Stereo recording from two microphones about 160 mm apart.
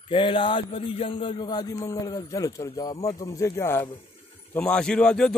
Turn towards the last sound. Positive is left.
turn(degrees=5)  # may be behind; listen again after turning